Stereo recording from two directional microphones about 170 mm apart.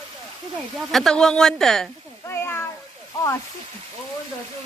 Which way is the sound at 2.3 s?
15° left (ahead or behind).